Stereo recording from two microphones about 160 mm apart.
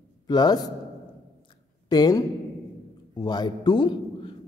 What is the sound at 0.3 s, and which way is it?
Speech, 25° left (ahead or behind).